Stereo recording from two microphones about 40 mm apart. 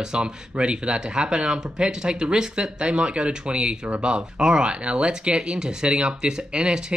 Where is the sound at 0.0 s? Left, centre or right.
Right.